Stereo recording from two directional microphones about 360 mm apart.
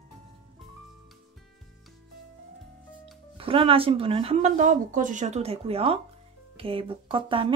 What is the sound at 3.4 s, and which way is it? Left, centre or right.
Speech, centre.